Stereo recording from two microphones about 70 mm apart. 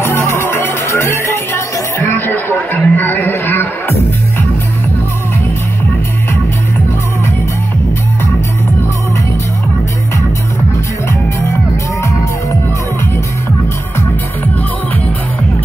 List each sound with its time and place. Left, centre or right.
0.0 s music: left
11.1 s music: left